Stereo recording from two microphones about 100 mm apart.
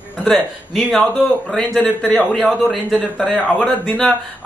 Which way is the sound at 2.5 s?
Centre (ahead or behind).